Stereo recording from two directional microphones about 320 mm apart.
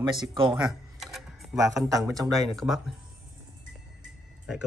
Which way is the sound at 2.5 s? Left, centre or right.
Centre.